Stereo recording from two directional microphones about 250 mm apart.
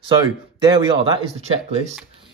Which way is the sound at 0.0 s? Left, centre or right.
Centre.